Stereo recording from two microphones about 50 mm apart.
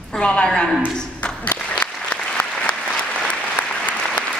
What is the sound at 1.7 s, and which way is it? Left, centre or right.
Applause, left.